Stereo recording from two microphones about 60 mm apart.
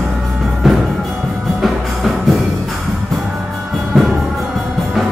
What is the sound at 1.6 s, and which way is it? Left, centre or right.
Music, centre.